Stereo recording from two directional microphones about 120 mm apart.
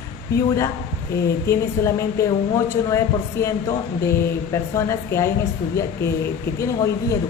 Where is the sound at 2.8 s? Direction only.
25° left (ahead or behind).